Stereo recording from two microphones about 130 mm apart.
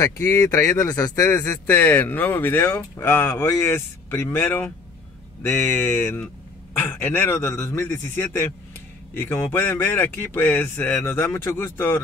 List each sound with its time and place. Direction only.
0.0 s speech: 20° left (ahead or behind)